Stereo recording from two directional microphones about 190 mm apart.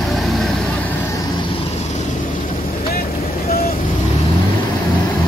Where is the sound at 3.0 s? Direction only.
50° left (ahead or behind).